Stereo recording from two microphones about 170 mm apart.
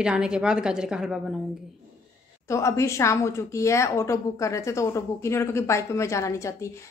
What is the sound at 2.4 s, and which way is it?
A woman's voice, 15° left (ahead or behind).